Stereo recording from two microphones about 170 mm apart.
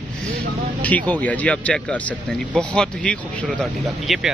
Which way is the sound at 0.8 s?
10° left (ahead or behind).